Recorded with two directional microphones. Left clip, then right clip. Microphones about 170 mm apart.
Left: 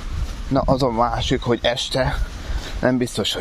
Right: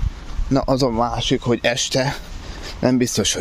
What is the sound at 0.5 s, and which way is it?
Speech, 45° right (ahead or behind).